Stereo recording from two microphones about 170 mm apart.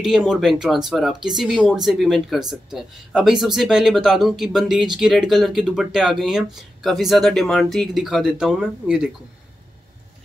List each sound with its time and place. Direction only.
0.0 s speech: centre (ahead or behind)